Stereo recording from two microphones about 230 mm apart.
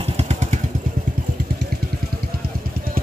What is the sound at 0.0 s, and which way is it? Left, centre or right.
Motorcycle, right.